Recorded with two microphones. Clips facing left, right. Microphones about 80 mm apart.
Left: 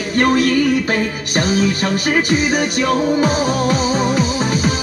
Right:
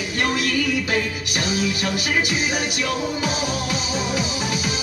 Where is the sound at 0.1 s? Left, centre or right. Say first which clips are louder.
Left 9 dB; left.